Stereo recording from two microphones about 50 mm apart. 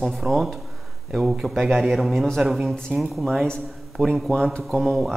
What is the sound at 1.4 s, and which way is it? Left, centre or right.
A man's voice, centre.